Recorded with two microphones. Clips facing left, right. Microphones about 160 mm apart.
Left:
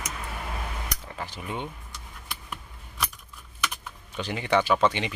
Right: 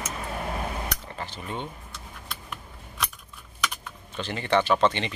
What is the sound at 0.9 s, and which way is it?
Cutlery, 10° left (ahead or behind).